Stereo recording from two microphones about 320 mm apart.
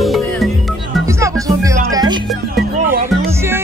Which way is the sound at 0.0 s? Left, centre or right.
Centre.